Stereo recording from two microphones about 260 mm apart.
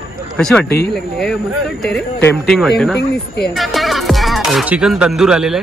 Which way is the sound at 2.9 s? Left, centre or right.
Left.